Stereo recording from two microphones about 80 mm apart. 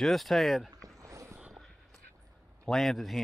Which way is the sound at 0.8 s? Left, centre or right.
Right.